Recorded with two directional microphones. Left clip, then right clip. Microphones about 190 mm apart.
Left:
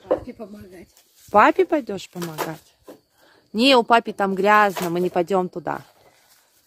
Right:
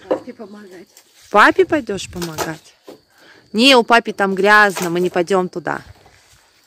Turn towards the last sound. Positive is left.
turn(degrees=-5)  # may be behind; listen again after turning